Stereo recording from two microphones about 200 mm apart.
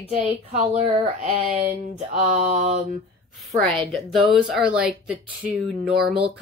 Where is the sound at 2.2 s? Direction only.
35° right (ahead or behind).